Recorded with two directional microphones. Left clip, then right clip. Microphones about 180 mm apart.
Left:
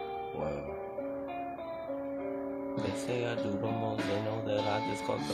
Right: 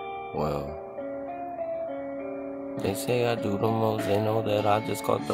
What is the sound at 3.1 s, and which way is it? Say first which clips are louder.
Speech: right 10 dB; 40° right (ahead or behind).